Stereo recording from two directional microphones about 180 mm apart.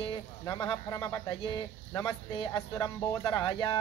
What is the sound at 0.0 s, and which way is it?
Speech, 25° left (ahead or behind).